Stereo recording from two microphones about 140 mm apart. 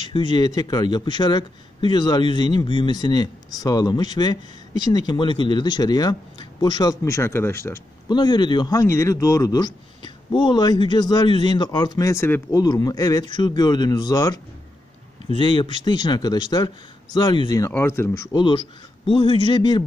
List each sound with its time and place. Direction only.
0.0 s a man's voice: 35° left (ahead or behind); by 7.8 s 20° left (ahead or behind)
8.1 s a man's voice: 30° left (ahead or behind)
17.6 s a man's voice: 15° left (ahead or behind)
18.2 s a man's voice: 30° left (ahead or behind)